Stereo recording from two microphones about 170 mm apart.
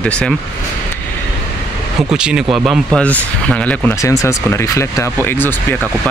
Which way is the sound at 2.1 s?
5° right (ahead or behind).